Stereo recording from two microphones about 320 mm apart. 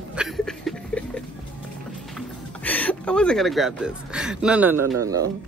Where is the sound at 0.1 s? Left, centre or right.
Centre.